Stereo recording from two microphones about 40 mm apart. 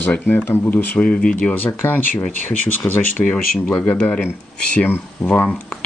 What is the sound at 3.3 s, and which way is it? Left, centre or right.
Speech, left.